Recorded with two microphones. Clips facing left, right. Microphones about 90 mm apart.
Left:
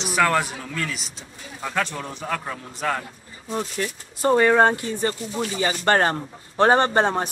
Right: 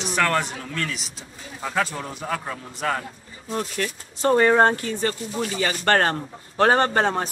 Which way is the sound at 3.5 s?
10° left (ahead or behind).